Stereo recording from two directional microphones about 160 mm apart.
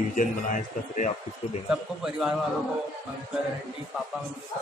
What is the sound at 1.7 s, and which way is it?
Speech, 5° right (ahead or behind).